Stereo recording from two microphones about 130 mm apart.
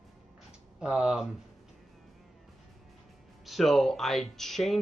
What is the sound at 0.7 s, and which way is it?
Speech, 5° right (ahead or behind).